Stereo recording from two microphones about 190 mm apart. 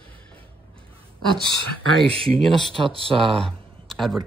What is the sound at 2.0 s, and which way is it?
Speech, centre (ahead or behind).